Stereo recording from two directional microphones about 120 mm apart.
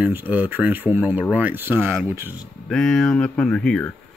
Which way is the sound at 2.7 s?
5° left (ahead or behind).